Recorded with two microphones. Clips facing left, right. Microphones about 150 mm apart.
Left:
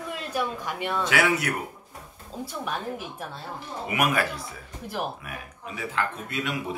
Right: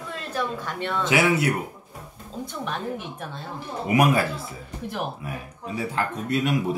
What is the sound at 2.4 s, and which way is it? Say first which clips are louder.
Speech: right 1 dB; 5° left (ahead or behind).